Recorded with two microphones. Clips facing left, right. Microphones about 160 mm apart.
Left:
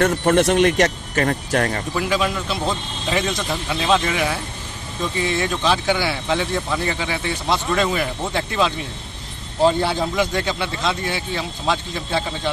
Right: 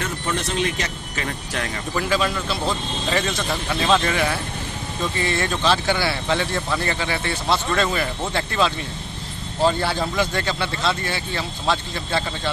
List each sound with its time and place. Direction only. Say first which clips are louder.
0.2 s speech: left 7 dB; 65° left (ahead or behind); by 1.8 s 45° left (ahead or behind)
2.0 s speech: even; 10° left (ahead or behind)